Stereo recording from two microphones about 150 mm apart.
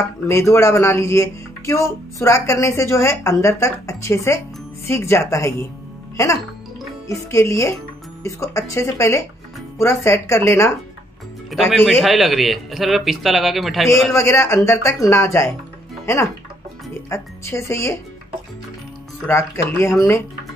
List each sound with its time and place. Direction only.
0.3 s speech: 20° left (ahead or behind)
7.1 s speech: 20° left (ahead or behind)
11.7 s speech: 5° right (ahead or behind)
14.1 s speech: 15° left (ahead or behind)
17.1 s speech: 20° left (ahead or behind)
19.2 s speech: 20° left (ahead or behind)